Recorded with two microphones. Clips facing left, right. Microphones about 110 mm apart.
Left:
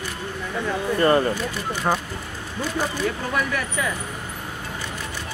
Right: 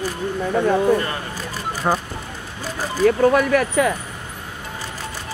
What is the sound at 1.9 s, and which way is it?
Speech, 10° right (ahead or behind).